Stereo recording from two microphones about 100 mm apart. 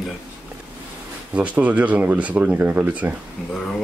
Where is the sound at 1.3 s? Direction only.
15° right (ahead or behind).